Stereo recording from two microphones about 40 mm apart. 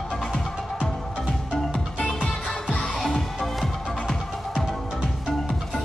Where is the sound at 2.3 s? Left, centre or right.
Centre.